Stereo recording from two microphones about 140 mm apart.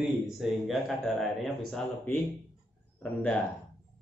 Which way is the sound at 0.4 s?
Centre (ahead or behind).